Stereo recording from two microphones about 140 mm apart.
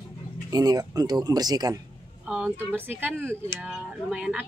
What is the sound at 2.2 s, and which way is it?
A woman's voice, 5° right (ahead or behind).